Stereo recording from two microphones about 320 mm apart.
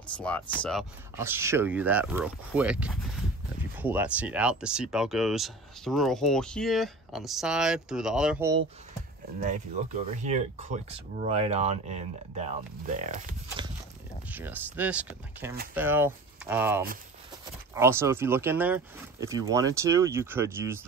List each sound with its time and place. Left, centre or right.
0.2 s speech: centre
10.1 s speech: right
14.3 s speech: centre